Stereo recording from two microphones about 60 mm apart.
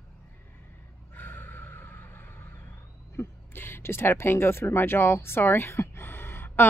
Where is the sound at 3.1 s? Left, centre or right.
Left.